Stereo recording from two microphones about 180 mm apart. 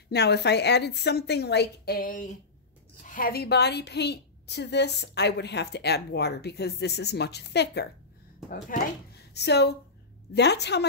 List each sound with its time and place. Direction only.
0.1 s a woman's voice: 65° left (ahead or behind)
8.5 s a woman's voice: 55° left (ahead or behind)